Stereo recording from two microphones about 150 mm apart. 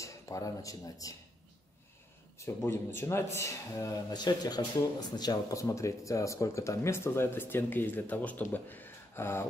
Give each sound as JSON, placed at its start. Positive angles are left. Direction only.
{"t": 0.0, "sound": "speech", "side_deg": 20}
{"t": 2.3, "sound": "a man's voice", "side_deg": 15}